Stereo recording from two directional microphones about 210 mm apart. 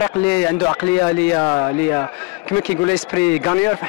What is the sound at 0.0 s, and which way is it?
A man's voice, 10° left (ahead or behind).